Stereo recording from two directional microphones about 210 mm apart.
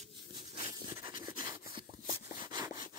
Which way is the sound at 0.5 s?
25° right (ahead or behind).